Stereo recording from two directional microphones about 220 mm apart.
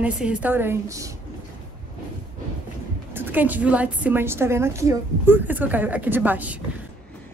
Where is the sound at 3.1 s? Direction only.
10° right (ahead or behind).